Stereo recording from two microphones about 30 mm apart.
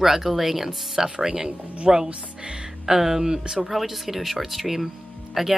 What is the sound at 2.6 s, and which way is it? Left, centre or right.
Speech, centre.